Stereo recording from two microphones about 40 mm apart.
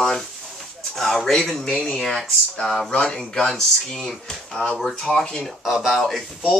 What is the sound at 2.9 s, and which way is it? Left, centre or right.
Speech, left.